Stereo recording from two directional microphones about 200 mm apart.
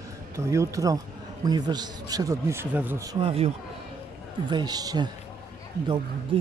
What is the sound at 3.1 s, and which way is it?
A man's voice, 30° right (ahead or behind).